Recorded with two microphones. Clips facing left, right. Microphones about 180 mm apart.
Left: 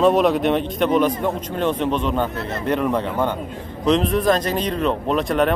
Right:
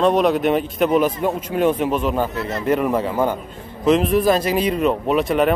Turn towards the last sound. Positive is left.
turn(degrees=-5)  # may be behind; listen again after turning